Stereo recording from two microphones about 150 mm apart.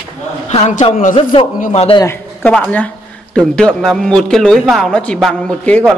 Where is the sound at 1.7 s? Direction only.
40° left (ahead or behind).